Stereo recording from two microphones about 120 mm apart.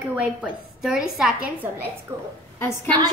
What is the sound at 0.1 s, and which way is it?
A woman's voice, 10° right (ahead or behind).